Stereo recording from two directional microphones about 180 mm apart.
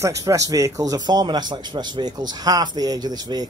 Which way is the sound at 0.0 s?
15° right (ahead or behind).